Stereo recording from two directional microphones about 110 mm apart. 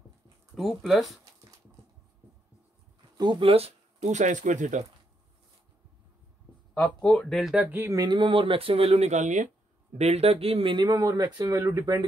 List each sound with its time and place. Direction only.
0.6 s speech: centre (ahead or behind)
3.2 s speech: 45° right (ahead or behind); by 4.9 s 90° right
6.7 s speech: 5° left (ahead or behind)
7.7 s speech: 20° right (ahead or behind)
8.0 s speech: 45° right (ahead or behind)